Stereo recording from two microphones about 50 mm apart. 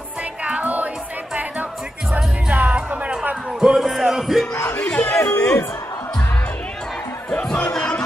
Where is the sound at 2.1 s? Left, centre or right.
Right.